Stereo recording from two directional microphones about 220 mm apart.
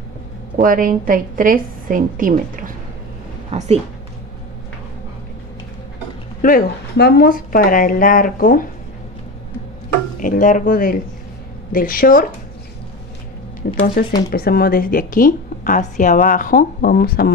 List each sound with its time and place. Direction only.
0.6 s a woman's voice: 40° right (ahead or behind)
6.4 s a woman's voice: 45° left (ahead or behind)
10.2 s a woman's voice: 35° left (ahead or behind)
13.6 s a woman's voice: 40° left (ahead or behind)